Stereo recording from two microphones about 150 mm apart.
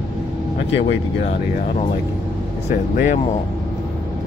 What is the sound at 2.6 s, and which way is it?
Speech, 70° left (ahead or behind).